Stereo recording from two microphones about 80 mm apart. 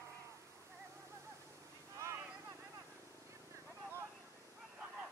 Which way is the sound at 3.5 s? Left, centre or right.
Right.